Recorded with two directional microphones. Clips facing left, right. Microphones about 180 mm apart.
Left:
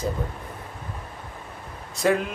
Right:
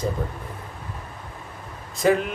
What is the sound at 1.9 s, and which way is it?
Speech, centre (ahead or behind).